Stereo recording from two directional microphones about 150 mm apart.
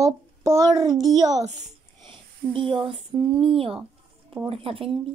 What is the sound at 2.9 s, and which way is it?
A child's voice, 35° right (ahead or behind).